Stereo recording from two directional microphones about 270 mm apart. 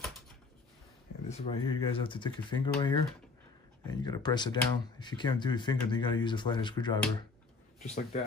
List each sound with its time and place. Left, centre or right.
1.3 s a man's voice: left